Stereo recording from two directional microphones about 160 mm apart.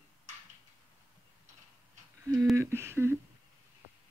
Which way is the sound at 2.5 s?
15° right (ahead or behind).